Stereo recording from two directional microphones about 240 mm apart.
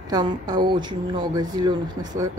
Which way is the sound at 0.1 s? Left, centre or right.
Centre.